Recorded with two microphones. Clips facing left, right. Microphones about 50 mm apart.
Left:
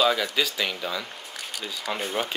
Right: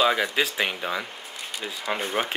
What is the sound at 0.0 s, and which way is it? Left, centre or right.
Speech, right.